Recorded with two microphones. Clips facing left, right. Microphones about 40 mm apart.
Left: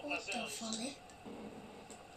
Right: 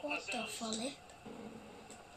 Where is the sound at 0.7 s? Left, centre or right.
Right.